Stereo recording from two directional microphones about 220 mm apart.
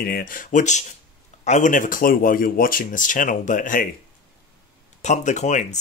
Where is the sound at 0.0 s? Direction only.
40° left (ahead or behind).